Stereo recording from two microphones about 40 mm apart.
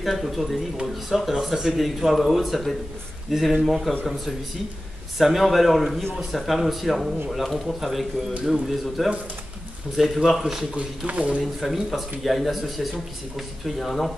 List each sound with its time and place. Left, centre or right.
0.0 s speech: centre
5.2 s speech: centre
11.1 s speech: right
11.6 s speech: centre